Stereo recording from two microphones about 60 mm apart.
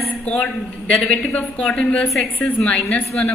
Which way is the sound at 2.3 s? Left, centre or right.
Left.